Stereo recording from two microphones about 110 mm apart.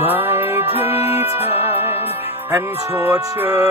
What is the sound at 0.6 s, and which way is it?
Music, 65° left (ahead or behind).